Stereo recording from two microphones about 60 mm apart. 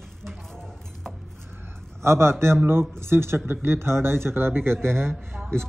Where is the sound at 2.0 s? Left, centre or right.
Right.